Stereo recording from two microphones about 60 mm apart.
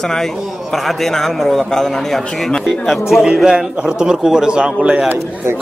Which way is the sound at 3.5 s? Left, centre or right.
Centre.